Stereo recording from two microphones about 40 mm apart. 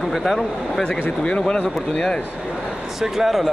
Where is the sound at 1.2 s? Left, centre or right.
Left.